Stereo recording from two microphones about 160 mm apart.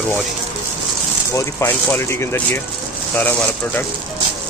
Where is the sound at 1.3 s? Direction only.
20° left (ahead or behind).